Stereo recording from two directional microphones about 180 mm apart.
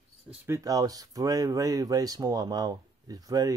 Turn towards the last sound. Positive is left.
turn(degrees=-20)  # may be behind; listen again after turning